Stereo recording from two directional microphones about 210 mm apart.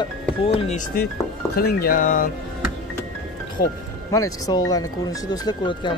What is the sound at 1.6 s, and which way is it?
Speech, 45° left (ahead or behind).